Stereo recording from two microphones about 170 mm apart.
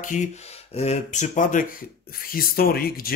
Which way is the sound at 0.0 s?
50° left (ahead or behind).